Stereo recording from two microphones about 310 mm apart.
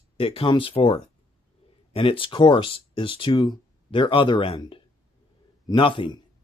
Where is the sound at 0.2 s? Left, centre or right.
Centre.